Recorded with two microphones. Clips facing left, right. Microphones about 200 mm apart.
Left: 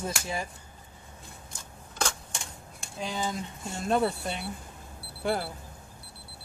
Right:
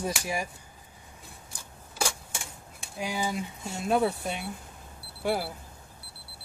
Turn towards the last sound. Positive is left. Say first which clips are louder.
# right 1 dB
turn(degrees=-5)  # may be behind; listen again after turning